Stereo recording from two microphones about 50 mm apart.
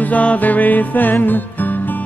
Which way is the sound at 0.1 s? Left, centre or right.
Left.